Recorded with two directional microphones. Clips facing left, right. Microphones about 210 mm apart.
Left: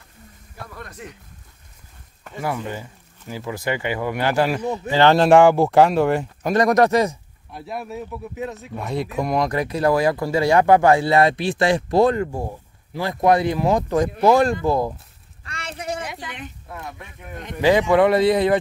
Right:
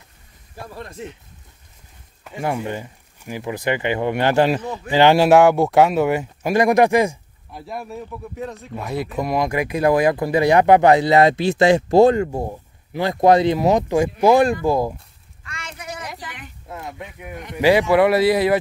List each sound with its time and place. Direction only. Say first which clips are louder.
0.6 s speech: right 4 dB; 25° right (ahead or behind)
2.6 s speech: right 3 dB; 15° right (ahead or behind)
4.6 s speech: left 3 dB; 20° left (ahead or behind)
4.9 s speech: right 1 dB; 10° right (ahead or behind)
7.5 s speech: left 1 dB; centre (ahead or behind)
15.4 s a sound: left 4 dB; 35° left (ahead or behind)
16.6 s speech: right 3 dB; 20° right (ahead or behind)